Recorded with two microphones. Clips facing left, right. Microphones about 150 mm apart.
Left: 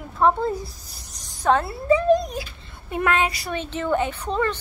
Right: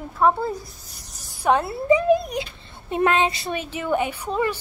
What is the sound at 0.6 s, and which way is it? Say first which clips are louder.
Speech: left 3 dB; 35° left (ahead or behind).